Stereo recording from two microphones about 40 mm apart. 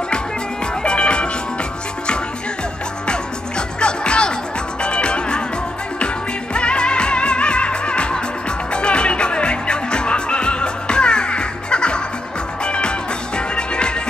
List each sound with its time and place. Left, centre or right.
0.8 s music: left
3.1 s music: left